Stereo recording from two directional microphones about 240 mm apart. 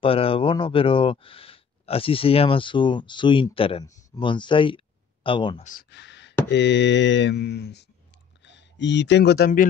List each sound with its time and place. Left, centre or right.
0.0 s speech: left
5.7 s a sound: left
6.5 s mantra: left
8.5 s speech: left